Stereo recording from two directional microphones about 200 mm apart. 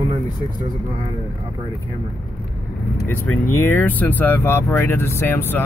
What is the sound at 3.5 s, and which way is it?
Speech, 10° left (ahead or behind).